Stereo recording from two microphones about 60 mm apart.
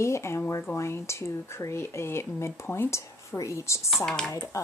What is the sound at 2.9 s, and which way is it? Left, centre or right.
Speech, left.